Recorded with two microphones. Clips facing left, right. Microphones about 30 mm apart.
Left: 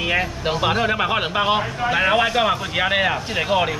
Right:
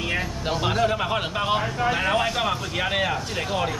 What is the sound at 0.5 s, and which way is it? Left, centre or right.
Speech, left.